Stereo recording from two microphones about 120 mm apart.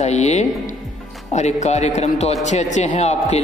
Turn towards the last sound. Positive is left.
turn(degrees=65)  # may be behind; listen again after turning